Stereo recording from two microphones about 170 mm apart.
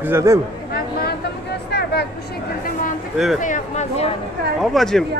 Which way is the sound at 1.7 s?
75° left (ahead or behind).